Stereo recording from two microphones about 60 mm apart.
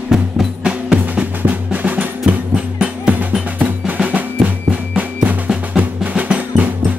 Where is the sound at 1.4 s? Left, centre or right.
Right.